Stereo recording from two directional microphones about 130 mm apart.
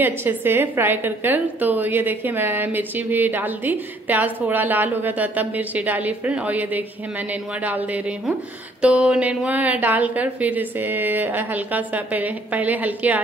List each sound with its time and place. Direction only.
0.0 s a woman's voice: 15° right (ahead or behind)